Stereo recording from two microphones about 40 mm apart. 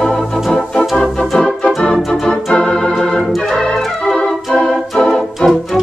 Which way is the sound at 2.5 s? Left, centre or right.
Left.